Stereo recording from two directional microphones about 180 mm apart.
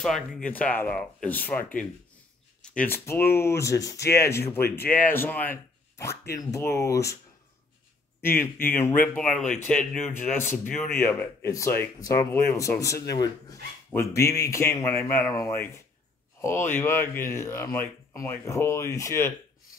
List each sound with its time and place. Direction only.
0.0 s speech: centre (ahead or behind)
8.2 s speech: 10° left (ahead or behind)